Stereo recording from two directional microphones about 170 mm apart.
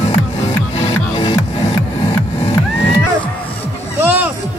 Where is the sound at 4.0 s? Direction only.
10° right (ahead or behind).